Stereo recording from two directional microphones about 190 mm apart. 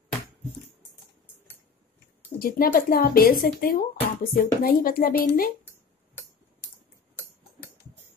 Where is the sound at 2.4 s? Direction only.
50° left (ahead or behind).